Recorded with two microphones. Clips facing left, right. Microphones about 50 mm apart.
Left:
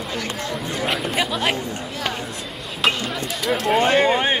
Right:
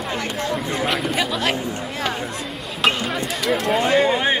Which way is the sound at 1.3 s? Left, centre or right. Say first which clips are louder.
Even; centre.